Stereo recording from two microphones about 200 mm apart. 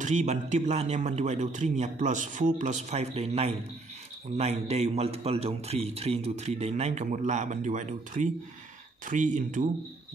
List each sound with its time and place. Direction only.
0.0 s a man's voice: 35° right (ahead or behind)